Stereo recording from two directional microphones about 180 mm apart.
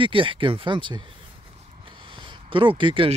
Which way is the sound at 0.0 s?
30° right (ahead or behind).